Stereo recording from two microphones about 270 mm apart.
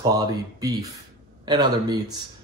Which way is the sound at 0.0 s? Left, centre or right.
Centre.